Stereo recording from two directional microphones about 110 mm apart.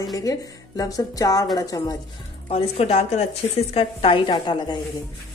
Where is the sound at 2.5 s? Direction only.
70° left (ahead or behind).